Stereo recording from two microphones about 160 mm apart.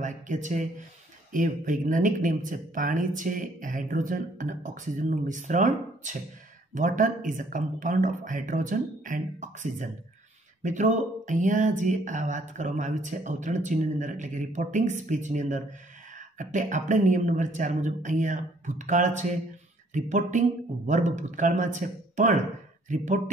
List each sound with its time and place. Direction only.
0.0 s speech: 50° right (ahead or behind)